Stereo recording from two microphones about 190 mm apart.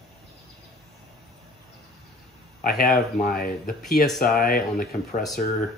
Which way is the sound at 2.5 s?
50° left (ahead or behind).